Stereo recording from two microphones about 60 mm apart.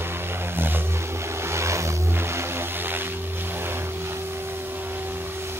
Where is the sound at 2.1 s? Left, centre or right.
Right.